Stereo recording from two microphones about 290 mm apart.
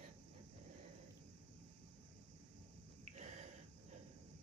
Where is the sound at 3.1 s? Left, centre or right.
Right.